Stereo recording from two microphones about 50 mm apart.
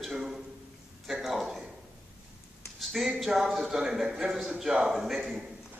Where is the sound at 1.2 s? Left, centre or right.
Centre.